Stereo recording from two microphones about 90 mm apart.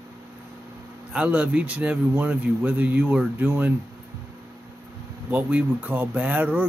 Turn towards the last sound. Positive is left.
turn(degrees=-15)  # may be behind; listen again after turning